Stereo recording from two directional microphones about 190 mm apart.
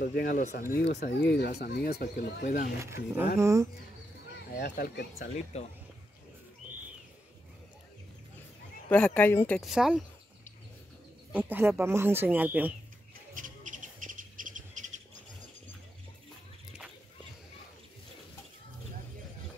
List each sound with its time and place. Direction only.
0.0 s speech: 55° left (ahead or behind)
2.8 s speech: 15° right (ahead or behind)
4.6 s speech: 65° left (ahead or behind)
5.5 s speech: 35° left (ahead or behind)
8.9 s speech: 10° left (ahead or behind)
9.6 s speech: centre (ahead or behind)
11.3 s speech: 10° right (ahead or behind)
13.3 s bird: 40° right (ahead or behind)